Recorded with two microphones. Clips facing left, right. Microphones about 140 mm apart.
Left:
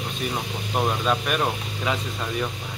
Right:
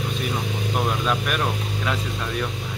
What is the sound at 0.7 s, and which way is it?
Speech, 5° left (ahead or behind).